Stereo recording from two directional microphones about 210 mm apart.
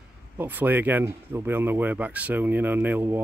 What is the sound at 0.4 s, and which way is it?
Speech, 10° right (ahead or behind).